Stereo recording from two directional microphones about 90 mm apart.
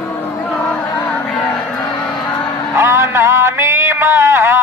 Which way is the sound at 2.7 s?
30° right (ahead or behind).